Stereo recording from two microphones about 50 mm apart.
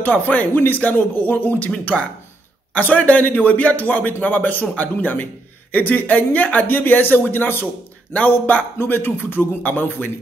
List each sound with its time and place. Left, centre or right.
0.0 s speech: left
2.7 s speech: left